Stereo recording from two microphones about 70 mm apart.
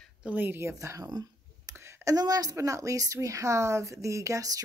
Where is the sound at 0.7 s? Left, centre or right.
Right.